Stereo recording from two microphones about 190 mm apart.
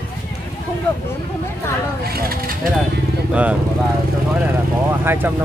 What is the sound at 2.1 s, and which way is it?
Pulleys, 50° right (ahead or behind).